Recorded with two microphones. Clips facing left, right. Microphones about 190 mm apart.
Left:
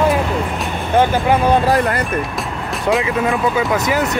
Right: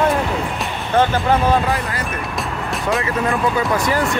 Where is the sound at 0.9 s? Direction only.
15° left (ahead or behind).